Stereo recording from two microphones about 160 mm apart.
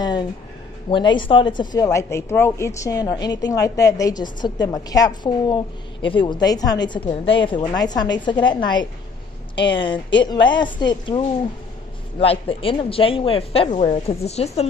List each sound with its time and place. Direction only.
0.8 s a woman's voice: 30° left (ahead or behind)